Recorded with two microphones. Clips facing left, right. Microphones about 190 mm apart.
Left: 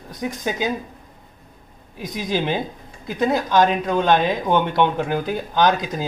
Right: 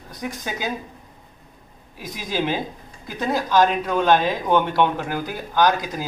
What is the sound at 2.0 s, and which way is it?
Speech, 20° left (ahead or behind).